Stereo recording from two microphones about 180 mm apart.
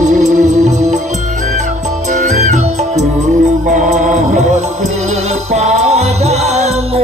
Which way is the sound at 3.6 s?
45° right (ahead or behind).